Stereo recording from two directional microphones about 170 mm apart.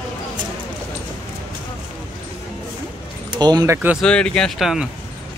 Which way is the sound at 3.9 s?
5° left (ahead or behind).